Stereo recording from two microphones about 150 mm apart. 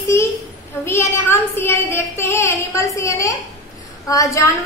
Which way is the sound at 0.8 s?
20° left (ahead or behind).